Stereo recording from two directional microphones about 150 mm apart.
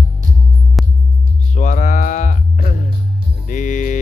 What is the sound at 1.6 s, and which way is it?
Music, 55° left (ahead or behind).